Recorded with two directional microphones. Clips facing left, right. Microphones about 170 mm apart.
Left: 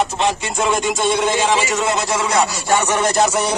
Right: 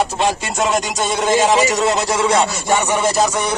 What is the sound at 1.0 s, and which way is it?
Speech, 45° right (ahead or behind).